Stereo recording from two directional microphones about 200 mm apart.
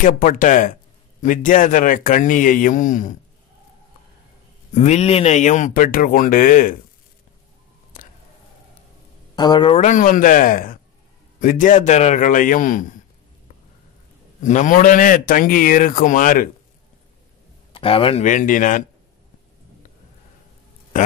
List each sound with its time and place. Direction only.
0.0 s speech: 45° left (ahead or behind)
4.7 s speech: 35° left (ahead or behind)
7.9 s a sound: 40° left (ahead or behind)
9.3 s speech: 20° left (ahead or behind)
9.8 s a man's voice: 40° left (ahead or behind)
14.4 s a man's voice: 40° left (ahead or behind)
17.7 s speech: 25° left (ahead or behind)
18.2 s speech: 40° left (ahead or behind)